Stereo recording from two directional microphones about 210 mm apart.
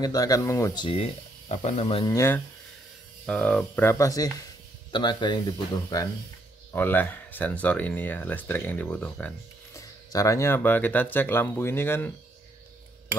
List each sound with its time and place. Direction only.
0.0 s speech: 15° left (ahead or behind)
2.1 s speech: 10° left (ahead or behind)